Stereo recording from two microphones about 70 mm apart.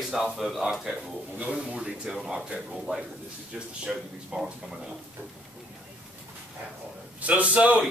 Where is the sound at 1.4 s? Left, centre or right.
Centre.